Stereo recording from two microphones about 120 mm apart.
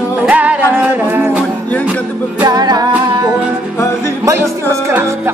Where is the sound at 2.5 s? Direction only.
35° right (ahead or behind).